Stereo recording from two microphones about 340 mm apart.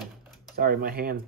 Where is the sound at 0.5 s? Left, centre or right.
Right.